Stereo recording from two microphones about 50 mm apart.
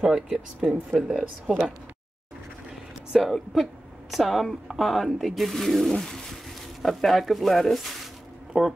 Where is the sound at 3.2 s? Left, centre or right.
Centre.